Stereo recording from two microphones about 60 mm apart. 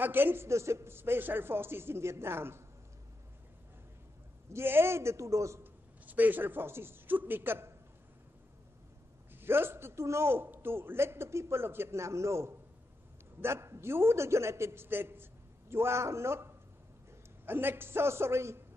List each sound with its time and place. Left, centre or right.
0.0 s a man's voice: right
0.5 s a man's voice: right
4.5 s a man's voice: right
5.6 s a man's voice: right
9.3 s a man's voice: right
17.5 s a man's voice: right